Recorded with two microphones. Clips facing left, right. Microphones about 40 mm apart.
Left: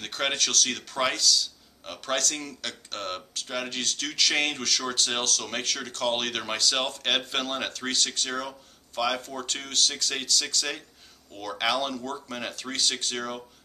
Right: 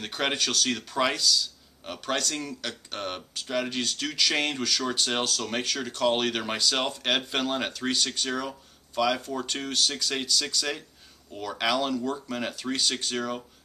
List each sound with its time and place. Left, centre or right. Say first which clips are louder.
0.0 s speech: even; centre